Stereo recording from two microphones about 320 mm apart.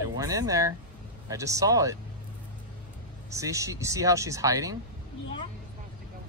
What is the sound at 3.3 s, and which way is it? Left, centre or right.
Speech, centre.